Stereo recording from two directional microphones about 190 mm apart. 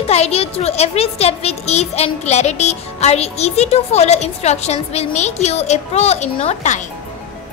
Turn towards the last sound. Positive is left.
turn(degrees=35)  # may be behind; listen again after turning